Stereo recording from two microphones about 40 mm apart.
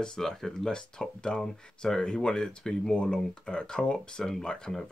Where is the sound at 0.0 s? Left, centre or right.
Centre.